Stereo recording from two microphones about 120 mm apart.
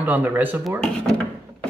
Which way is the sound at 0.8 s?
5° left (ahead or behind).